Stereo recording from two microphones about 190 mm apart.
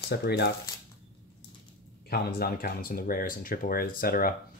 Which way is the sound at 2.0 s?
55° left (ahead or behind).